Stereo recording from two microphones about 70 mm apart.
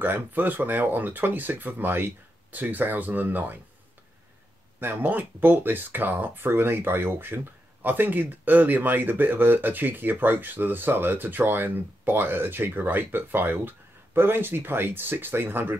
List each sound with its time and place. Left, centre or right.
0.0 s speech: right
4.7 s speech: right